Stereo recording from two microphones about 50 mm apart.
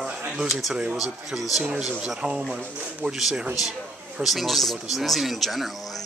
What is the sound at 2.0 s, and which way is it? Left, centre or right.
Speech, centre.